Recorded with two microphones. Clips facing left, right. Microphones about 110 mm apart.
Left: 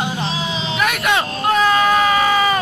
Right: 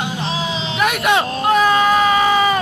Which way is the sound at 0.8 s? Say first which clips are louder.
Right 3 dB; 15° right (ahead or behind).